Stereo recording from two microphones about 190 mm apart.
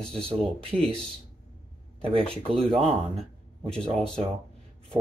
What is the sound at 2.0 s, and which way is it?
Speech, 30° right (ahead or behind).